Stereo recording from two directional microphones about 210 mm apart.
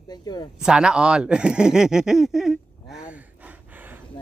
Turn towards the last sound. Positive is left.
turn(degrees=-10)  # may be behind; listen again after turning